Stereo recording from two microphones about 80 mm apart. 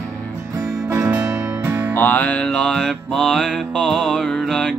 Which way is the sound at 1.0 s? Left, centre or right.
Centre.